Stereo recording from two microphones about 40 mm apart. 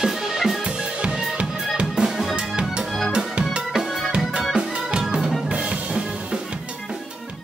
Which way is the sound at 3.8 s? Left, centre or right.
Centre.